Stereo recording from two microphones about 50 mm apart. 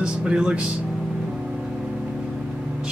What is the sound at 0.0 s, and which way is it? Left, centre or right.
Speech, centre.